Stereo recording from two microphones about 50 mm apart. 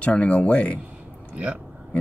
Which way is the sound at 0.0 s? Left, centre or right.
Left.